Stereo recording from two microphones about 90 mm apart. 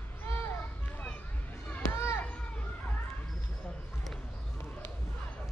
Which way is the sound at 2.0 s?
30° left (ahead or behind).